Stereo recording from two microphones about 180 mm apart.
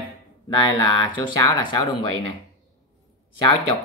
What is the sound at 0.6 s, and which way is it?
Speech, 20° left (ahead or behind).